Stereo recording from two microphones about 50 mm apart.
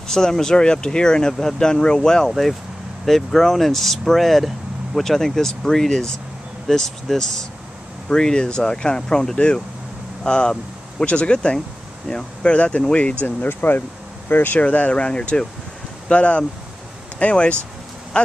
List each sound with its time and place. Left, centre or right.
0.1 s speech: centre
13.5 s speech: left
14.6 s speech: left